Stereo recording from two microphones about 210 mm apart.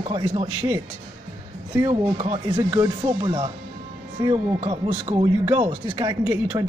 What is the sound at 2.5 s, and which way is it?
A woman's voice, 15° right (ahead or behind).